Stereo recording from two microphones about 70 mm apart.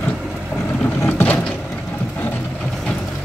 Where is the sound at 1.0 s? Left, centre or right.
Left.